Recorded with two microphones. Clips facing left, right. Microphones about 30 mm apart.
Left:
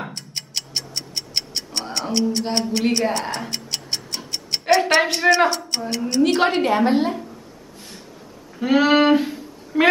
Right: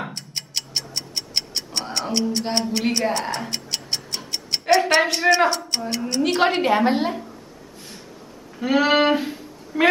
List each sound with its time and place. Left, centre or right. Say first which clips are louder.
0.0 s tick-tock: even; centre
8.5 s a sound: left 2 dB; centre
9.7 s a woman's voice: left 2 dB; centre